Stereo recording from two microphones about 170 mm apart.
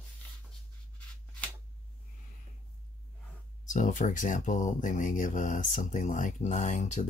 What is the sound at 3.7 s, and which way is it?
Speech, 50° left (ahead or behind).